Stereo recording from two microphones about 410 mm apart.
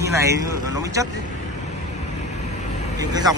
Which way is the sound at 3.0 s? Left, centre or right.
Centre.